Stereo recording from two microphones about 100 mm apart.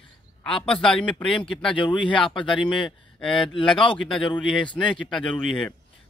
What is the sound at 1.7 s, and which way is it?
Speech, 55° left (ahead or behind).